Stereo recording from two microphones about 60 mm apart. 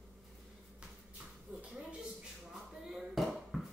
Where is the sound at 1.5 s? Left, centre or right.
Right.